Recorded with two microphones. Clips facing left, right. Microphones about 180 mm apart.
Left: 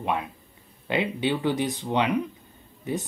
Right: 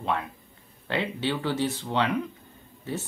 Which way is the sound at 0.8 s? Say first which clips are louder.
Left 3 dB; 15° left (ahead or behind).